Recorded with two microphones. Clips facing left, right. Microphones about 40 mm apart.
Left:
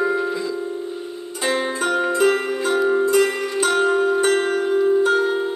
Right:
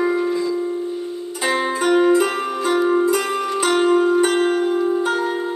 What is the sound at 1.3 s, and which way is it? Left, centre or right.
Zither, centre.